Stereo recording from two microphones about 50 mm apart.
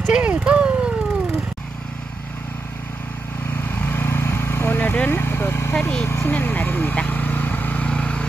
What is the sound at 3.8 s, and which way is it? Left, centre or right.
Vehicle, left.